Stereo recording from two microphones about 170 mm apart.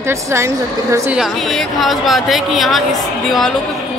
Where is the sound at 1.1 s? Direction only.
Centre (ahead or behind).